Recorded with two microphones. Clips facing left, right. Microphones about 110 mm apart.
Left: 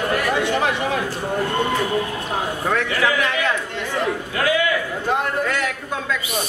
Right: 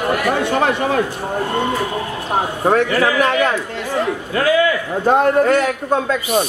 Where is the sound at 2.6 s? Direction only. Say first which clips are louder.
Right 6 dB; 40° right (ahead or behind).